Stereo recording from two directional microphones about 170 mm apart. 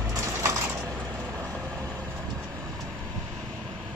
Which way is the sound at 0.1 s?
15° right (ahead or behind).